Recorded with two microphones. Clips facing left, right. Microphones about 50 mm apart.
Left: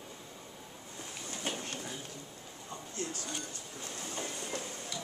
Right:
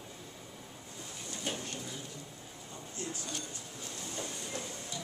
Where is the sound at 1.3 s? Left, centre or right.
Left.